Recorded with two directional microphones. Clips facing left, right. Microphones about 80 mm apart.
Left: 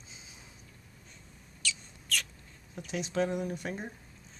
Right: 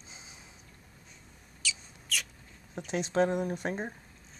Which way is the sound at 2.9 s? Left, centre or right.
Right.